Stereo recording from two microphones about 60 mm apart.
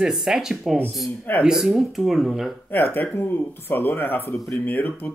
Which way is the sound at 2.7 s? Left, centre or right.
Left.